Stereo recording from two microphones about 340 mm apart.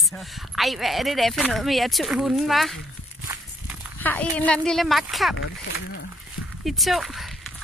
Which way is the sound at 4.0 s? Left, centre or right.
Centre.